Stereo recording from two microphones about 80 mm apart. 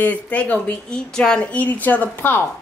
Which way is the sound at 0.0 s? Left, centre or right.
Centre.